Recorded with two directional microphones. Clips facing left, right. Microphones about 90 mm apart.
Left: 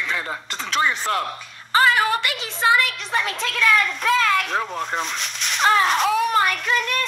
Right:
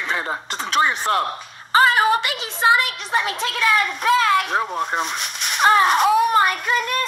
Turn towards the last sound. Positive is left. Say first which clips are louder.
# right 1 dB
turn(degrees=-40)  # may be behind; listen again after turning